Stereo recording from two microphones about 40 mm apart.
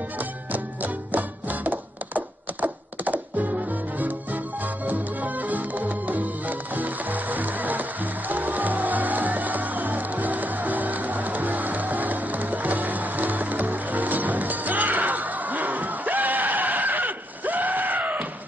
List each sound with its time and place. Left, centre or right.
0.2 s music: right